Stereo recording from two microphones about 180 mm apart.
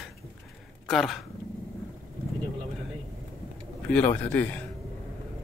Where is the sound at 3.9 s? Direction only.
10° left (ahead or behind).